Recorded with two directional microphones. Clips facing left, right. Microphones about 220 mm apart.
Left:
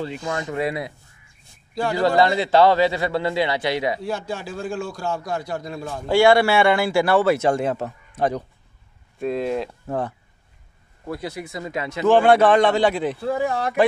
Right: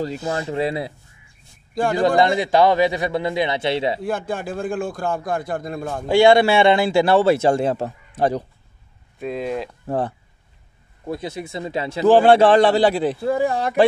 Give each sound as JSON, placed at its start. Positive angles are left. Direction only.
{"t": 0.0, "sound": "a man's voice", "side_deg": -35}
{"t": 2.0, "sound": "speech", "side_deg": -15}
{"t": 4.0, "sound": "a man's voice", "side_deg": -55}
{"t": 6.0, "sound": "a man's voice", "side_deg": -20}
{"t": 9.2, "sound": "speech", "side_deg": 0}
{"t": 9.8, "sound": "speech", "side_deg": -35}
{"t": 11.1, "sound": "speech", "side_deg": -20}